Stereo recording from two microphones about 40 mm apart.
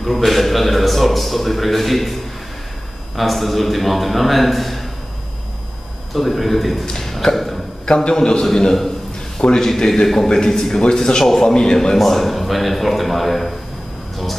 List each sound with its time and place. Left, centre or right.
0.0 s speech: centre
3.2 s speech: centre
6.1 s speech: centre
7.8 s a man's voice: left
9.4 s a man's voice: centre
12.0 s speech: centre